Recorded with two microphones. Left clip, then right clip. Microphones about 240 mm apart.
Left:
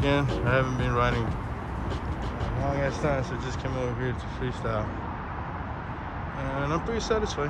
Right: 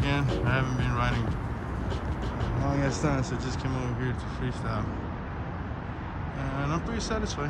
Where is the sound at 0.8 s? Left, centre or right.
Centre.